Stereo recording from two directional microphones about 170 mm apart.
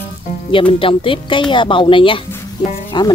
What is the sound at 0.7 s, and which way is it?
Speech, 30° left (ahead or behind).